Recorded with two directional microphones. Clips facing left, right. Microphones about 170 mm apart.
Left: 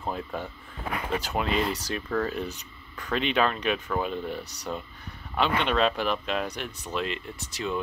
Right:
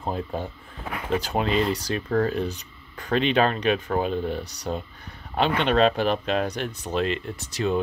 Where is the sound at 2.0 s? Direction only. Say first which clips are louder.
Right 5 dB; 40° right (ahead or behind).